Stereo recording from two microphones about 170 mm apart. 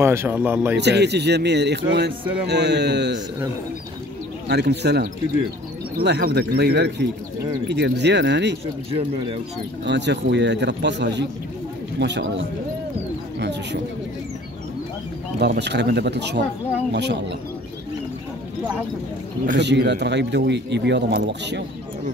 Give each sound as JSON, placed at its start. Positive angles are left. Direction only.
{"t": 0.0, "sound": "speech", "side_deg": -15}
{"t": 0.7, "sound": "speech", "side_deg": -80}
{"t": 4.5, "sound": "speech", "side_deg": -80}
{"t": 7.6, "sound": "speech", "side_deg": -90}
{"t": 9.8, "sound": "speech", "side_deg": -90}
{"t": 15.3, "sound": "speech", "side_deg": -80}
{"t": 19.6, "sound": "speech", "side_deg": -90}